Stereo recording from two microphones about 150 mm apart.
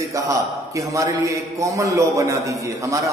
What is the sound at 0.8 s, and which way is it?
A man's voice, 20° right (ahead or behind).